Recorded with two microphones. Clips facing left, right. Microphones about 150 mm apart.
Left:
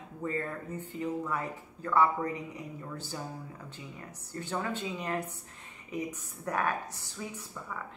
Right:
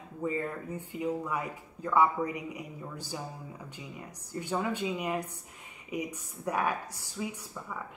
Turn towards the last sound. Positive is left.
turn(degrees=-10)  # may be behind; listen again after turning